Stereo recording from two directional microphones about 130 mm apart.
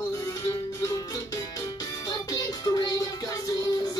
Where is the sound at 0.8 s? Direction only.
25° left (ahead or behind).